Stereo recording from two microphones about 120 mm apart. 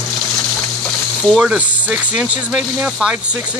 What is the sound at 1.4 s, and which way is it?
Speech, 10° right (ahead or behind).